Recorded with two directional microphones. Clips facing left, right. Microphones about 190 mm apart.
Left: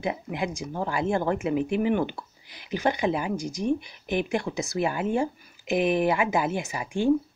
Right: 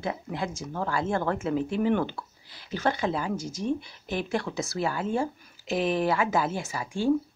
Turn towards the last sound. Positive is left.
turn(degrees=15)  # may be behind; listen again after turning